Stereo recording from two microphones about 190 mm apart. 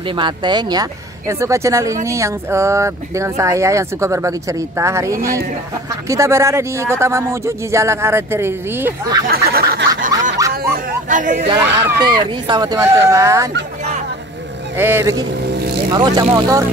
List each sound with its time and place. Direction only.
0.1 s speech: 25° right (ahead or behind)
9.3 s a sound: 50° right (ahead or behind)
11.5 s speech: 10° right (ahead or behind)
12.0 s speech: 25° right (ahead or behind)
14.8 s speech: 10° right (ahead or behind)